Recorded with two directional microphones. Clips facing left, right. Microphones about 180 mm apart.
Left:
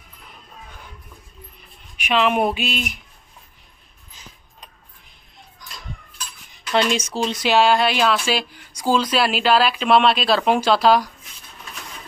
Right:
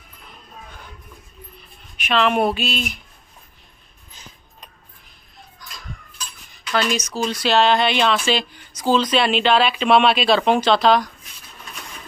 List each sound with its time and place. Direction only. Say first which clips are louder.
2.0 s speech: even; 10° left (ahead or behind)
5.6 s a sound: even; 20° left (ahead or behind)
6.7 s speech: left 2 dB; 25° left (ahead or behind); by 11.1 s 5° left (ahead or behind)